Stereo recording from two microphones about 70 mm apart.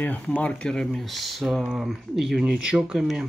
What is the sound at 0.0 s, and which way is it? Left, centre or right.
Speech, left.